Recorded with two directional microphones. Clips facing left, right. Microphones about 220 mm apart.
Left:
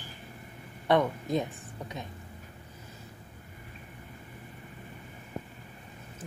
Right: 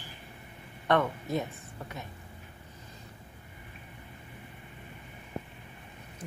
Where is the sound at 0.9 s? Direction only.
15° left (ahead or behind).